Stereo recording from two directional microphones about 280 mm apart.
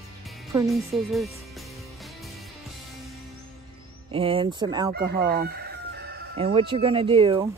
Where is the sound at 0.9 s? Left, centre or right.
Centre.